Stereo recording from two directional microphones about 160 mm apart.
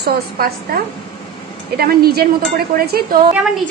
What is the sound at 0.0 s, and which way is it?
A woman's voice, 75° right (ahead or behind).